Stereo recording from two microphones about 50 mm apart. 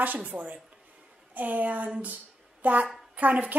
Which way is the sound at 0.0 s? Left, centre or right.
Right.